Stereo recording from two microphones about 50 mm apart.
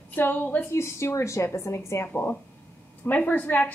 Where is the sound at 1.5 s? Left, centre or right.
Left.